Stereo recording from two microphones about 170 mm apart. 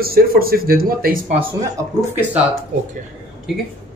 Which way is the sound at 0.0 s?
60° right (ahead or behind).